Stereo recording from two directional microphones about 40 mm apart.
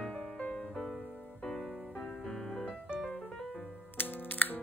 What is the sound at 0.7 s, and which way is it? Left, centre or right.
Music, centre.